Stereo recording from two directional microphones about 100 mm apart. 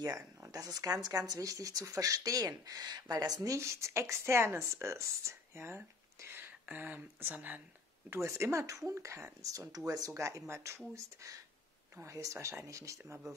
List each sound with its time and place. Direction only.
0.0 s speech: 35° right (ahead or behind); by 7.6 s 15° right (ahead or behind)
8.1 s speech: 30° right (ahead or behind)
12.0 s speech: 30° right (ahead or behind)